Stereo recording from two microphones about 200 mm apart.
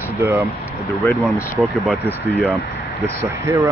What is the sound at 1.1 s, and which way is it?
Speech, centre (ahead or behind).